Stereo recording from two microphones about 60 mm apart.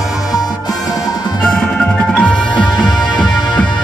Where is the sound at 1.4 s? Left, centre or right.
Centre.